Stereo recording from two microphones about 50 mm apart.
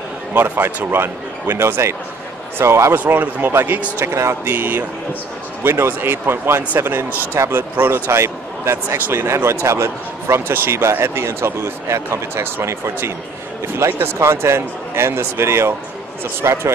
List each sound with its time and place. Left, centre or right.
0.3 s a man's voice: right
3.2 s speech: right
4.0 s speech: right
4.5 s a man's voice: right
12.6 s a man's voice: right
16.4 s speech: right